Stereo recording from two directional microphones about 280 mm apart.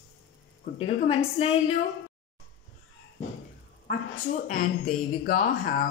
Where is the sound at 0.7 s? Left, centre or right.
Left.